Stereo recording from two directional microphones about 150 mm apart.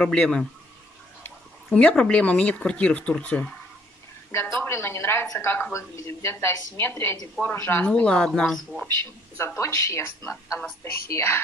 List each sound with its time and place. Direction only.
0.0 s speech: 5° left (ahead or behind)
1.7 s a woman's voice: 5° left (ahead or behind)
4.6 s a woman's voice: 15° left (ahead or behind)
9.6 s a woman's voice: 20° left (ahead or behind)